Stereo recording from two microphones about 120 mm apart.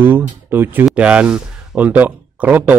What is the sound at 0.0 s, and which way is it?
Speech, 15° right (ahead or behind).